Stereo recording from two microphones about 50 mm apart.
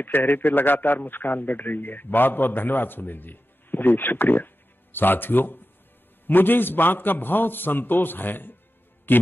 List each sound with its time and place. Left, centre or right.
0.0 s a man's voice: left
9.1 s music: left